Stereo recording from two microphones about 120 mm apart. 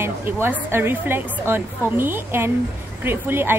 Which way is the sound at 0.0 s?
20° right (ahead or behind).